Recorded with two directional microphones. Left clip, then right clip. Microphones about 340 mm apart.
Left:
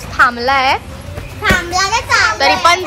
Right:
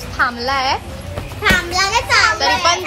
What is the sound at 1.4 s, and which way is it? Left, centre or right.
Speech, centre.